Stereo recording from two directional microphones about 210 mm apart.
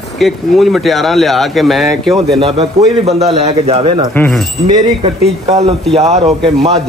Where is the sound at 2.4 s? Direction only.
30° right (ahead or behind).